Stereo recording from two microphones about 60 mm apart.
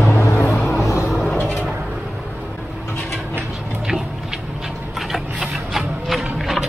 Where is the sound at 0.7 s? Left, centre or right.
Left.